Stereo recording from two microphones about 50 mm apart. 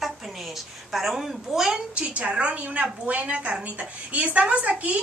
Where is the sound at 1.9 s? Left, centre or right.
Right.